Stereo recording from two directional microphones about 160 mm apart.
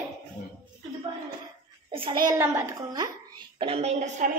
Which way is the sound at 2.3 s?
15° right (ahead or behind).